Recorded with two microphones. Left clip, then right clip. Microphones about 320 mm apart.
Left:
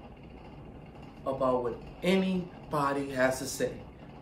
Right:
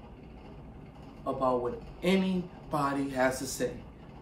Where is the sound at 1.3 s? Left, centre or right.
Centre.